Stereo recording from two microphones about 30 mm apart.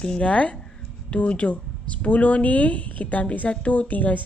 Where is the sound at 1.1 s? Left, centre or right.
Left.